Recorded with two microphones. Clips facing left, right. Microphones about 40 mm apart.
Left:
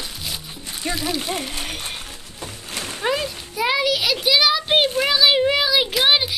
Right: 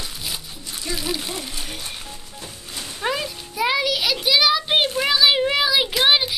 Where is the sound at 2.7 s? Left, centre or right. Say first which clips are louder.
Left 4 dB; left.